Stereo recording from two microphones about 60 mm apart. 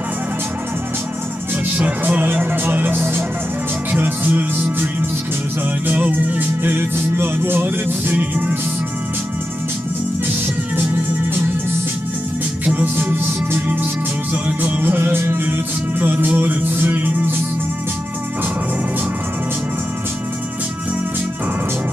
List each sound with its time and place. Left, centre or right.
1.9 s music: right
5.9 s music: right
12.6 s music: right